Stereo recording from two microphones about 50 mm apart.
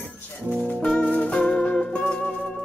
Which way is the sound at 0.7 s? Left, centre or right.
Left.